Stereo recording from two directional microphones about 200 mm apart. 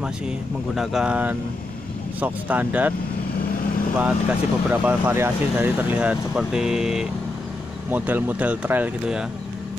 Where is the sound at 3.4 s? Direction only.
45° left (ahead or behind).